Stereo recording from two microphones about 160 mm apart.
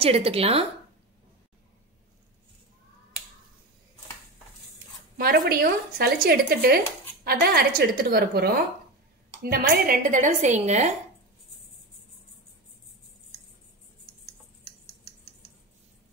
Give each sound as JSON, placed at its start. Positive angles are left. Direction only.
{"t": 0.0, "sound": "speech", "side_deg": -35}
{"t": 5.1, "sound": "speech", "side_deg": -65}